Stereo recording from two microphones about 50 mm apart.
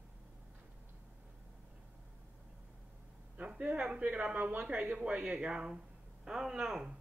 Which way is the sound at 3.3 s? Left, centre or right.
Right.